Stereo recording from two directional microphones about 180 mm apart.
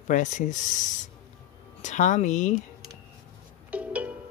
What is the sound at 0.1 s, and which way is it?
Speech, 45° left (ahead or behind).